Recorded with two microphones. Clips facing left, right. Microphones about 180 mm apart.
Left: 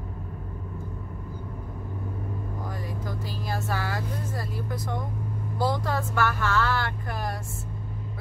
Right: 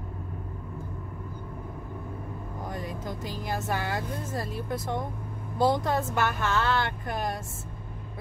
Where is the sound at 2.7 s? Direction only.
20° right (ahead or behind).